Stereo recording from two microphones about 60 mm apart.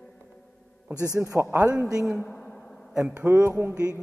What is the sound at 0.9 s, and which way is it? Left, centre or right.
Speech, left.